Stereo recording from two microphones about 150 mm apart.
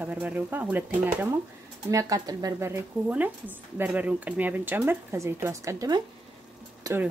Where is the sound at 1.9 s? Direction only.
25° right (ahead or behind).